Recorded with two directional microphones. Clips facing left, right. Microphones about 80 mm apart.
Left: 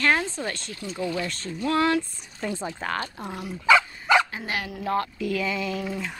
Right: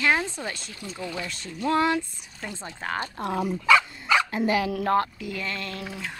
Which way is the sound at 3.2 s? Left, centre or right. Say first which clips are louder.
Right 6 dB; right.